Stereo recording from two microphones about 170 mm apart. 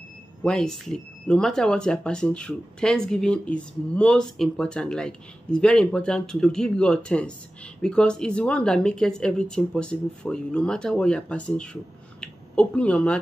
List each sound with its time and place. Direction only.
0.4 s speech: 5° left (ahead or behind)